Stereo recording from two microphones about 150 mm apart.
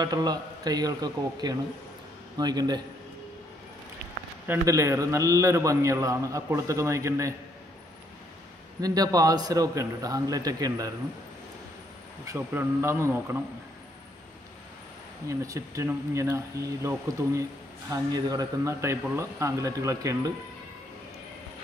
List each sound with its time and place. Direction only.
0.0 s speech: 25° right (ahead or behind)
4.5 s speech: 20° right (ahead or behind)
8.8 s speech: 25° right (ahead or behind)
12.3 s speech: 15° right (ahead or behind)
15.2 s speech: 20° right (ahead or behind)